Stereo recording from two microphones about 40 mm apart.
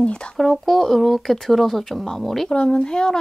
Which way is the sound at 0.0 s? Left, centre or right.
Left.